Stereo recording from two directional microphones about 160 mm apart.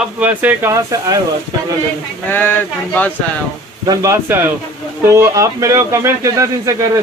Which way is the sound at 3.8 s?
20° right (ahead or behind).